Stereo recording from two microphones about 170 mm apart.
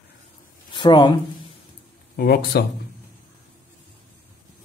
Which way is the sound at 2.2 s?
65° left (ahead or behind).